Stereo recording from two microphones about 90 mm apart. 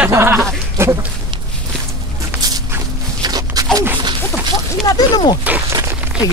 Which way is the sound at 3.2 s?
50° right (ahead or behind).